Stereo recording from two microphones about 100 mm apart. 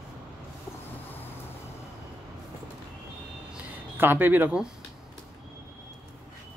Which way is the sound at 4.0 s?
20° right (ahead or behind).